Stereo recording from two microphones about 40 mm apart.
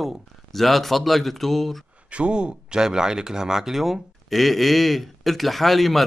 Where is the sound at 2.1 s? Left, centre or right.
Right.